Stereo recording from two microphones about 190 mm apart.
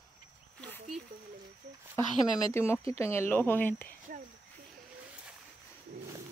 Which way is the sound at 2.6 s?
15° left (ahead or behind).